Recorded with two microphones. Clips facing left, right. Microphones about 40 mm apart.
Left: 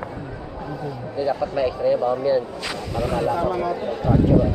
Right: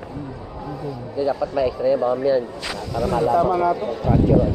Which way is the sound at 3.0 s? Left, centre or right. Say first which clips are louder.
Right 2 dB; left.